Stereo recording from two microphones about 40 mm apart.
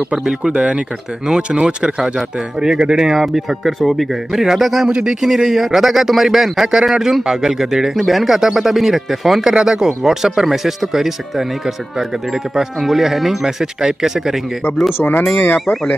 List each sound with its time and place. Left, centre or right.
0.3 s speech: right
1.2 s speech: centre
2.1 s speech: centre
4.8 s speech: centre
5.2 s speech: centre
7.9 s speech: centre
13.4 s speech: centre
15.0 s speech: left
15.6 s speech: centre